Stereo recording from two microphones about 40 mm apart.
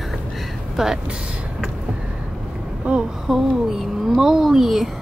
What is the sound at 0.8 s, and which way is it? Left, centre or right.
Speech, centre.